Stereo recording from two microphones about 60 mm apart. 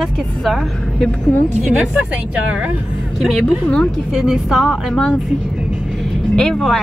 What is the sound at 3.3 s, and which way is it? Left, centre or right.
Speech, centre.